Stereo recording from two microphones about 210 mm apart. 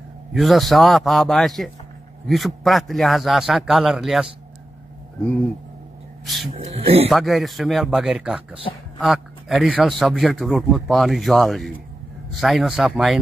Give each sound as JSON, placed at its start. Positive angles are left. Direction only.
{"t": 0.3, "sound": "a man's voice", "side_deg": 0}
{"t": 6.2, "sound": "a man's voice", "side_deg": 0}
{"t": 6.6, "sound": "speech", "side_deg": -25}
{"t": 7.1, "sound": "a man's voice", "side_deg": 0}